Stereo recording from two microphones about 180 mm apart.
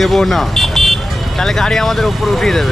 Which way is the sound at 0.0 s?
Centre (ahead or behind).